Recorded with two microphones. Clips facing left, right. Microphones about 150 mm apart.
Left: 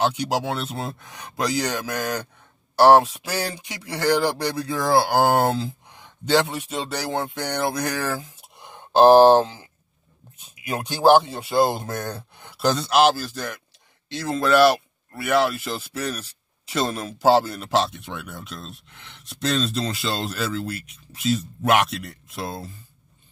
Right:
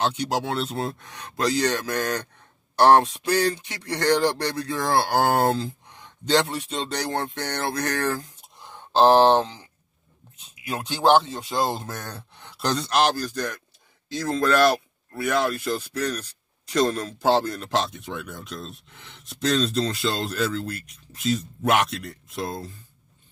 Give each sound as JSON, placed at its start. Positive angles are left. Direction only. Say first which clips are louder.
{"t": 0.0, "sound": "speech", "louder": "left 2 dB", "side_deg": 10}